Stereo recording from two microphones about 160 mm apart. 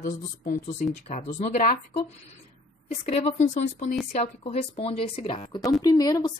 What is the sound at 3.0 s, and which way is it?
A woman's voice, 40° left (ahead or behind).